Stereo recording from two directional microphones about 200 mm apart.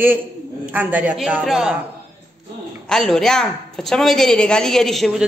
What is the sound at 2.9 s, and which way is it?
A woman's voice, centre (ahead or behind).